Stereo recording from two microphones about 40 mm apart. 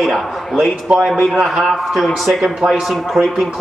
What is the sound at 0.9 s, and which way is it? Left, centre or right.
Speech, right.